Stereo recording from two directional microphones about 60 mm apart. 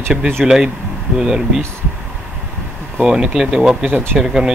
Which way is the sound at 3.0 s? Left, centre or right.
Centre.